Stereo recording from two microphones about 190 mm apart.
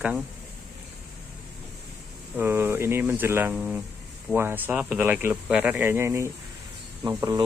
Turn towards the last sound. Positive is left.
turn(degrees=-20)  # may be behind; listen again after turning